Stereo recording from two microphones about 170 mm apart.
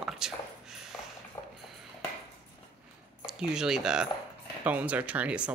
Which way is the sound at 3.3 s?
5° right (ahead or behind).